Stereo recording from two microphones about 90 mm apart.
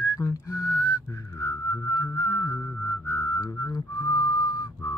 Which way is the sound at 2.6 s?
30° left (ahead or behind).